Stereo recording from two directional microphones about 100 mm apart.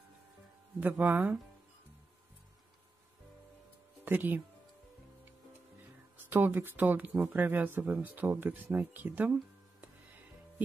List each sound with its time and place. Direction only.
0.7 s speech: 20° right (ahead or behind)
4.0 s speech: 20° right (ahead or behind)
6.3 s speech: 20° right (ahead or behind)